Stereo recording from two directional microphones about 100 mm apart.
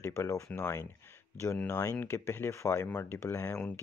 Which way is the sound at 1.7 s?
25° left (ahead or behind).